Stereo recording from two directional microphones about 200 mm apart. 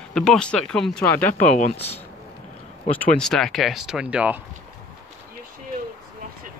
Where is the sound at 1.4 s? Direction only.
35° left (ahead or behind).